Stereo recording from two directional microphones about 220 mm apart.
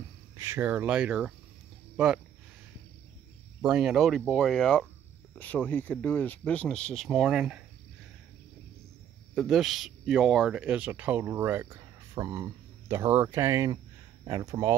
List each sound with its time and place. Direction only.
0.4 s speech: 10° right (ahead or behind)
3.6 s speech: centre (ahead or behind)
9.3 s speech: centre (ahead or behind)